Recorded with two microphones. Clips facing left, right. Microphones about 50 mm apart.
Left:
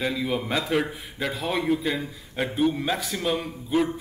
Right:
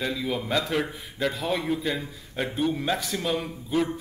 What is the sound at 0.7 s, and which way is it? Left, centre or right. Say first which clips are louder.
A man's voice: left 3 dB; centre.